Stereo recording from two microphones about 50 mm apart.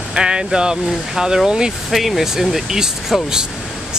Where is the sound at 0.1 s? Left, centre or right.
Centre.